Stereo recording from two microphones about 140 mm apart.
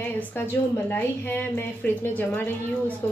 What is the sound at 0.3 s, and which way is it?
A woman's voice, 15° left (ahead or behind).